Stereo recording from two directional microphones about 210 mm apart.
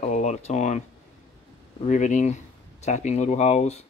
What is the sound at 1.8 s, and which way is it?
Speech, 35° left (ahead or behind).